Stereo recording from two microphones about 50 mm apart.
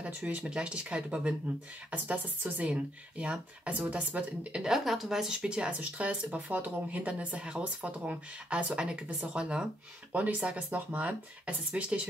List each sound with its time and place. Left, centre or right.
0.0 s speech: right
4.6 s speech: centre
10.1 s speech: right